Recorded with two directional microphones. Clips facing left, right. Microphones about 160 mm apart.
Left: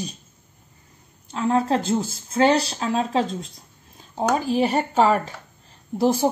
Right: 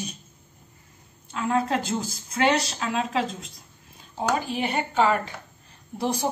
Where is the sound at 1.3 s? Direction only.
30° left (ahead or behind).